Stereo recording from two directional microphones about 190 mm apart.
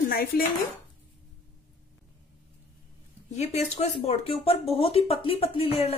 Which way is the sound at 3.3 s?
35° left (ahead or behind).